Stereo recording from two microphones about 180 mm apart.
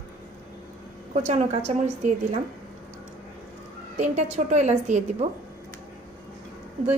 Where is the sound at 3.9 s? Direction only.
40° right (ahead or behind).